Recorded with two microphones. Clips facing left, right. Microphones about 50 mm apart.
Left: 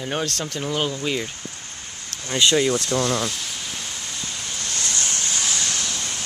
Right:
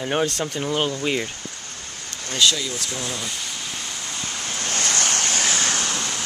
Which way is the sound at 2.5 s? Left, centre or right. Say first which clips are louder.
Left 9 dB; left.